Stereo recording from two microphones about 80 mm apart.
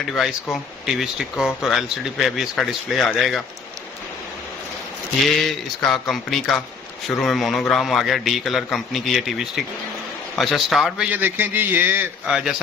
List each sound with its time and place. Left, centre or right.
0.1 s speech: centre
5.5 s speech: centre
11.1 s a man's voice: right
12.3 s a man's voice: centre